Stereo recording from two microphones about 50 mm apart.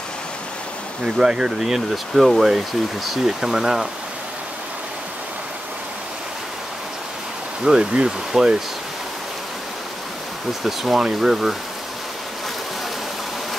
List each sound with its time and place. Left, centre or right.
1.0 s speech: centre
7.6 s speech: centre
10.6 s speech: centre